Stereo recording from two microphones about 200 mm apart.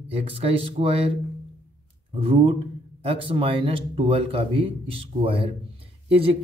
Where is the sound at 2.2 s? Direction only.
30° right (ahead or behind).